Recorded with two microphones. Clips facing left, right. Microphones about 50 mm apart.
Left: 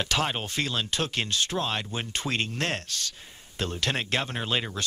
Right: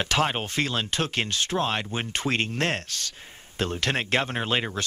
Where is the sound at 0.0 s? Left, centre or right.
Right.